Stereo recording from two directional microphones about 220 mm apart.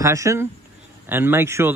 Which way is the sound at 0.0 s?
15° right (ahead or behind).